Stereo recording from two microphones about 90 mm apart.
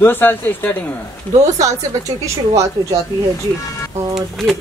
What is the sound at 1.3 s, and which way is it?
Speech, 40° right (ahead or behind).